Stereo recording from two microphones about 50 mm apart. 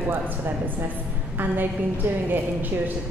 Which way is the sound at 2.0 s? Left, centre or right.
Right.